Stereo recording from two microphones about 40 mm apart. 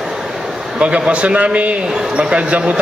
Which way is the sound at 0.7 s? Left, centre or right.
Right.